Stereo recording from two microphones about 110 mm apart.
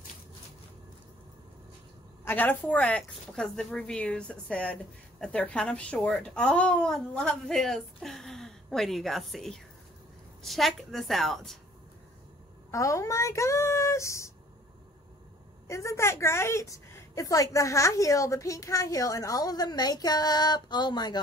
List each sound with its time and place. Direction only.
2.2 s a woman's voice: 15° left (ahead or behind)
12.7 s speech: 30° left (ahead or behind)
15.6 s a woman's voice: 25° left (ahead or behind)